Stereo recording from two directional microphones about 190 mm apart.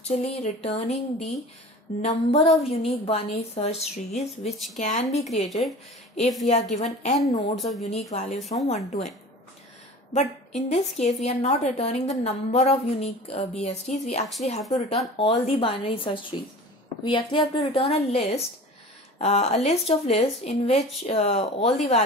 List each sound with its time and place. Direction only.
0.1 s a woman's voice: 35° left (ahead or behind)
5.5 s speech: centre (ahead or behind)
6.8 s a woman's voice: 40° left (ahead or behind)
7.5 s speech: centre (ahead or behind)
8.1 s a woman's voice: 35° left (ahead or behind)
8.4 s speech: centre (ahead or behind)
8.6 s a woman's voice: 35° left (ahead or behind)
10.1 s a woman's voice: 35° left (ahead or behind)